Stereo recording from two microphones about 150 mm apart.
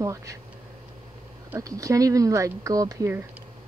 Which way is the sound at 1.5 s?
20° right (ahead or behind).